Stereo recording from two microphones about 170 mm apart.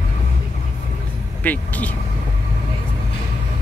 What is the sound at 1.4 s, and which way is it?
Speech, 10° left (ahead or behind).